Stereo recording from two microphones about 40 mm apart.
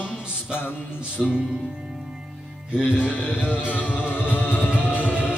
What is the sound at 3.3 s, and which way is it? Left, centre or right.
Music, right.